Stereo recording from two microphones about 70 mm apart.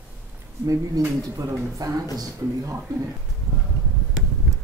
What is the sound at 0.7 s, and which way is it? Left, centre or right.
Speech, right.